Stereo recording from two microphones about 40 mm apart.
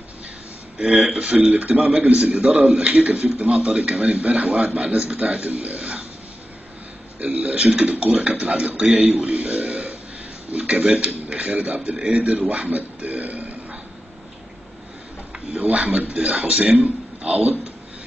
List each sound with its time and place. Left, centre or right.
1.1 s a man's voice: right
2.9 s a man's voice: right
7.2 s a man's voice: right
9.1 s a man's voice: right
15.5 s a man's voice: right